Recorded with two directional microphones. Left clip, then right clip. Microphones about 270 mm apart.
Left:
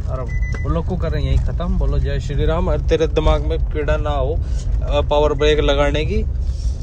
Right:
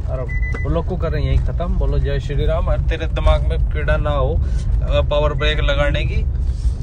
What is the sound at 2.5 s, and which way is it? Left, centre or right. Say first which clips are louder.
Speech: left 5 dB; left.